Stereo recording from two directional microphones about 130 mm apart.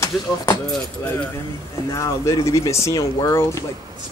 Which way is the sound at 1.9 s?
25° left (ahead or behind).